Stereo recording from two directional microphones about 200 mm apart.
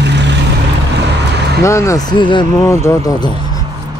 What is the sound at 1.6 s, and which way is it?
Speech, 15° left (ahead or behind).